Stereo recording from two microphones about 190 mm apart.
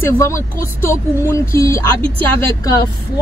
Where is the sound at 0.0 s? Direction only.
15° left (ahead or behind).